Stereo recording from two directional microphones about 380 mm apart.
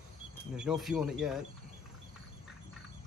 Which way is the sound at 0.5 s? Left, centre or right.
Centre.